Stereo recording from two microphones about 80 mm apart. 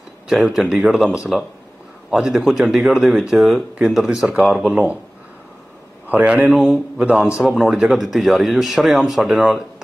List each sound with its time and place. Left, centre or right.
0.3 s speech: centre
6.0 s a man's voice: centre